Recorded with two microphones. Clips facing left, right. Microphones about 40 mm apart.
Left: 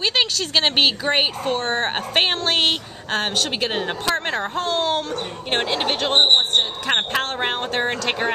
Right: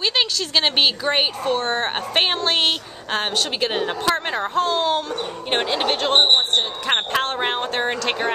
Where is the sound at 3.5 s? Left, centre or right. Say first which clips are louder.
Right 1 dB; centre.